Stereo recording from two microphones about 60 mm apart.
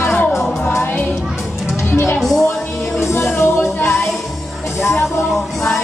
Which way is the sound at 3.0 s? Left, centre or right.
Left.